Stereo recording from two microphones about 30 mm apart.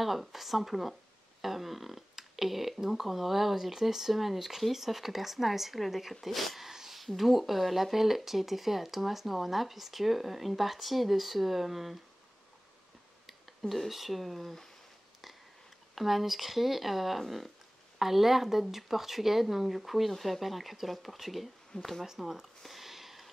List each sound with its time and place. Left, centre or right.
0.0 s speech: centre
6.6 s a sound: centre
7.0 s speech: centre
13.3 s speech: centre
15.9 s speech: centre
22.0 s speech: centre
22.6 s a sound: centre